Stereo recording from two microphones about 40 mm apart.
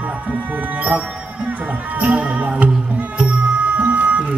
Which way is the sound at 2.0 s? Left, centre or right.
Right.